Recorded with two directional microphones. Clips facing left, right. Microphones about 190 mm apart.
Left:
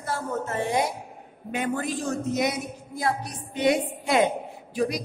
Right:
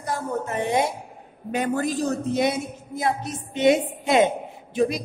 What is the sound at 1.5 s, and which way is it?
A man's voice, 40° right (ahead or behind).